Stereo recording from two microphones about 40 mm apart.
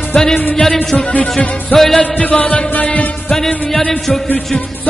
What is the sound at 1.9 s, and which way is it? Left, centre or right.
Music, left.